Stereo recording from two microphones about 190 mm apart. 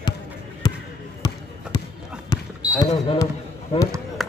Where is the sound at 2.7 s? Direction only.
30° left (ahead or behind).